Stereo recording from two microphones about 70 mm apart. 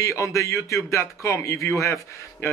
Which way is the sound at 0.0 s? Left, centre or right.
Left.